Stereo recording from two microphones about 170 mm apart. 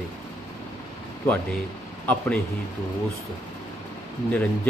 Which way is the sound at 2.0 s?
10° left (ahead or behind).